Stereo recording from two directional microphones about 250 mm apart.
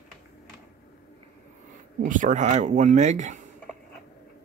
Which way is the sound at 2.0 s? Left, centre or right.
Right.